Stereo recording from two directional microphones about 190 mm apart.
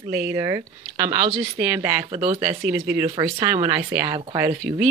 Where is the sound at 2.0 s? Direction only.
25° right (ahead or behind).